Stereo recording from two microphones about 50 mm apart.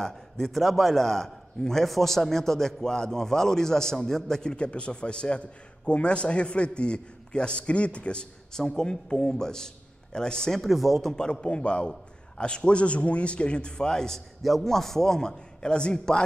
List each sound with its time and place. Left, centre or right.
0.0 s a man's voice: centre
10.6 s speech: centre
11.1 s a man's voice: centre